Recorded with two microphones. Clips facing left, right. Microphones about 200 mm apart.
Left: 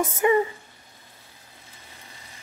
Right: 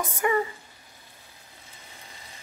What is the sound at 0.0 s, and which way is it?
Speech, 20° left (ahead or behind).